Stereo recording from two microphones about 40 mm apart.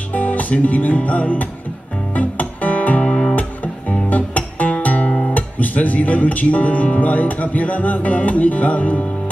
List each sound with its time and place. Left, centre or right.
0.1 s music: left
3.3 s music: left
5.3 s speech: left